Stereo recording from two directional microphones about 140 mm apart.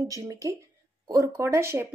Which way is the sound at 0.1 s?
25° right (ahead or behind).